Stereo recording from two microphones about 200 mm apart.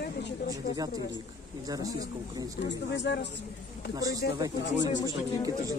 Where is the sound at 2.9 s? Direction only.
60° left (ahead or behind).